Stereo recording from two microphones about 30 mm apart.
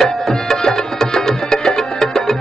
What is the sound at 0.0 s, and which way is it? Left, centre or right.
Music, centre.